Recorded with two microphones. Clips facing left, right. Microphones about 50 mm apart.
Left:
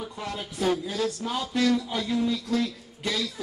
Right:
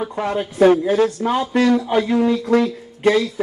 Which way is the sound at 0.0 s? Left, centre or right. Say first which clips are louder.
Right 12 dB; right.